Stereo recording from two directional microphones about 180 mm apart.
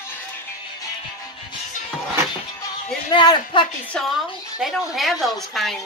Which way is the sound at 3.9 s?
Centre (ahead or behind).